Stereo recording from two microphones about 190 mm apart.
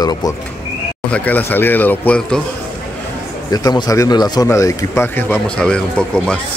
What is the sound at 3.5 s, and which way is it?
A man's voice, 20° left (ahead or behind).